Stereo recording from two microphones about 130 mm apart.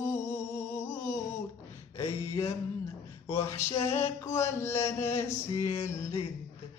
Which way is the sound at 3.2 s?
20° left (ahead or behind).